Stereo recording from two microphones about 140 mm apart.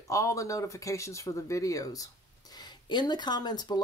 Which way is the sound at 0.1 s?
20° left (ahead or behind).